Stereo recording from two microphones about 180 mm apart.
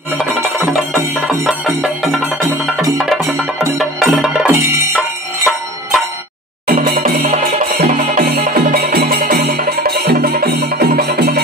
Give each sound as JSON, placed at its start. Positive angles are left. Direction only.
{"t": 0.4, "sound": "music", "side_deg": -15}
{"t": 1.8, "sound": "music", "side_deg": 0}
{"t": 3.7, "sound": "music", "side_deg": 0}
{"t": 4.5, "sound": "music", "side_deg": -15}
{"t": 4.9, "sound": "music", "side_deg": 0}
{"t": 6.7, "sound": "music", "side_deg": -50}
{"t": 7.2, "sound": "music", "side_deg": -40}